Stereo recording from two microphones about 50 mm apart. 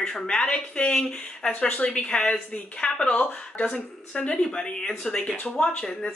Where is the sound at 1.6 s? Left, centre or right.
Left.